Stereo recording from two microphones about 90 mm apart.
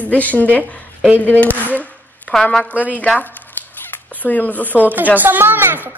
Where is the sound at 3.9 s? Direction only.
20° left (ahead or behind).